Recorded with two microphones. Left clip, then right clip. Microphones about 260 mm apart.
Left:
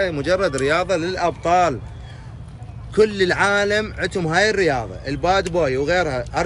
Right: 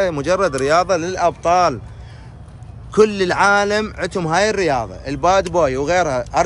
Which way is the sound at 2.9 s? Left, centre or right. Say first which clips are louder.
Right 2 dB; centre.